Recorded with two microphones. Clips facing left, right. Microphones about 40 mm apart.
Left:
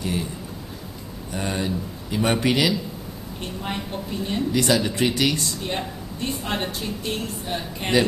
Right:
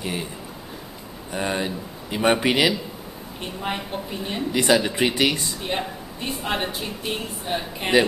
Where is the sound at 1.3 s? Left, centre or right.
Centre.